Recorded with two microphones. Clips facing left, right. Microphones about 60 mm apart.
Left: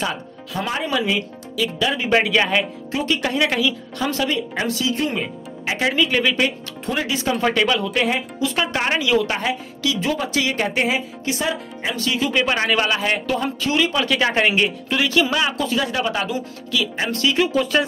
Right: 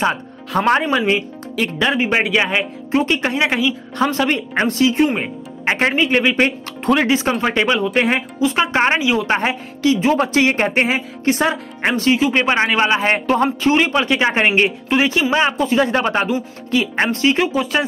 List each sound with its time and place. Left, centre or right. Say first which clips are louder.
0.5 s speech: right 8 dB; right
2.0 s speech: left 1 dB; right
2.9 s speech: right 6 dB; right
4.0 s speech: right 4 dB; right
4.9 s speech: right 6 dB; right
7.3 s speech: right 2 dB; right
9.3 s speech: right 5 dB; right
11.9 s speech: right 6 dB; right
14.0 s speech: right 2 dB; right
15.8 s speech: right 6 dB; right
17.1 s speech: right 1 dB; right
17.5 s speech: even; centre